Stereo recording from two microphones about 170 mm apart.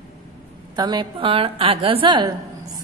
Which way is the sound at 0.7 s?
25° right (ahead or behind).